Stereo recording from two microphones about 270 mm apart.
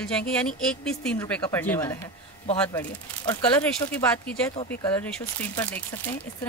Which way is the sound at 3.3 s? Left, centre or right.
Centre.